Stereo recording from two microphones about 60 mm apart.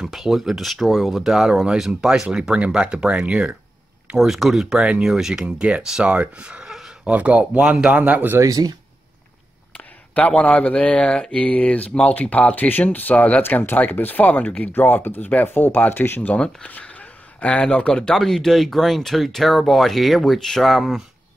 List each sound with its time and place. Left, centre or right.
0.0 s speech: centre
4.2 s speech: centre
6.1 s speech: right
8.4 s speech: right
9.8 s speech: left
13.4 s speech: left
14.7 s speech: left; by 21.0 s centre